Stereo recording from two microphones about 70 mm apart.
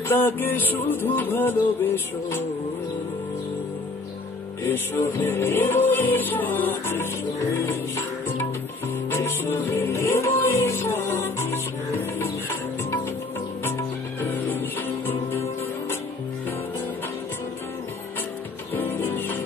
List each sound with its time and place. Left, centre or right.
0.1 s music: left
4.6 s music: left
14.2 s music: left
18.8 s music: left